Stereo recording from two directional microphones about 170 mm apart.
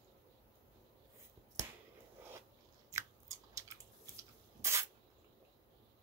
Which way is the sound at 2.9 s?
20° right (ahead or behind).